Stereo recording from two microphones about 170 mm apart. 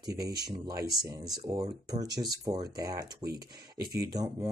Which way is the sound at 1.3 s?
25° right (ahead or behind).